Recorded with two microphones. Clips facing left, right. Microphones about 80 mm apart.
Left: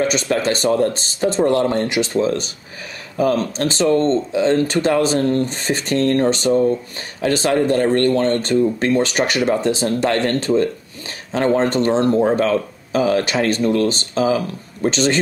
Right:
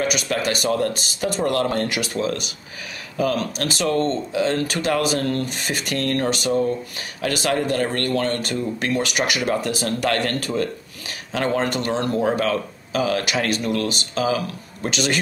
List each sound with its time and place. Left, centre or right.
0.0 s speech: left